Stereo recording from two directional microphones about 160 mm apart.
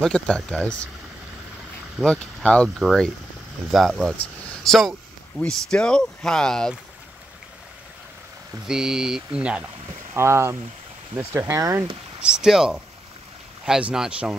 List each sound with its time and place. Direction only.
0.0 s speech: 5° left (ahead or behind)
2.0 s speech: 5° left (ahead or behind)
4.5 s vehicle: centre (ahead or behind)
5.4 s speech: 5° left (ahead or behind)
8.6 s speech: 5° right (ahead or behind); by 11.9 s 20° right (ahead or behind)
12.2 s speech: 5° right (ahead or behind)